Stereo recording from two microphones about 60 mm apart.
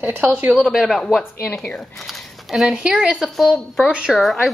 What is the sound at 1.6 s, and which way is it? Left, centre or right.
Speech, centre.